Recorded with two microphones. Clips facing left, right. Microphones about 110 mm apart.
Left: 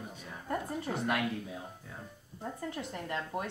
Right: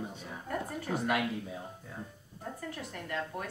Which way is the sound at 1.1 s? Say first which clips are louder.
Right 1 dB; centre (ahead or behind).